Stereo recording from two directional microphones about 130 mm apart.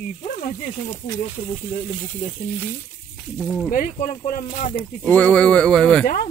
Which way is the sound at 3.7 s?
85° left.